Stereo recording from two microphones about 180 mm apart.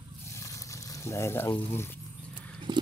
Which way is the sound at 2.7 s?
25° right (ahead or behind).